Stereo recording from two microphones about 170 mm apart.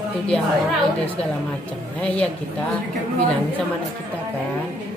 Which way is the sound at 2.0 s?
5° left (ahead or behind).